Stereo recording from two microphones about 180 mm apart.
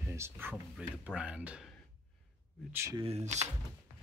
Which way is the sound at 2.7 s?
15° right (ahead or behind).